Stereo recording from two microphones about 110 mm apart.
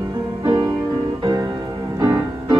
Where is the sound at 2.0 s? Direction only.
35° right (ahead or behind).